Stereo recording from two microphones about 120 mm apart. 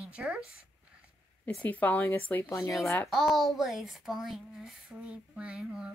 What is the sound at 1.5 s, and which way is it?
A woman's voice, 15° left (ahead or behind).